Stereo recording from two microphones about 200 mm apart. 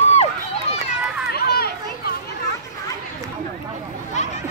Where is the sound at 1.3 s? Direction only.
50° left (ahead or behind).